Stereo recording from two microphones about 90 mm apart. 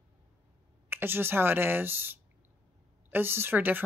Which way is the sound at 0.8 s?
25° right (ahead or behind).